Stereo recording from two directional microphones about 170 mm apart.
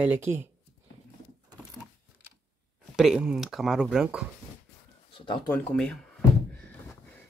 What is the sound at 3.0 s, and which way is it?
Speech, 5° right (ahead or behind).